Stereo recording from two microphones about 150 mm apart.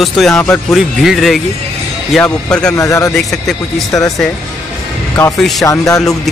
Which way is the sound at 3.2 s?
Centre (ahead or behind).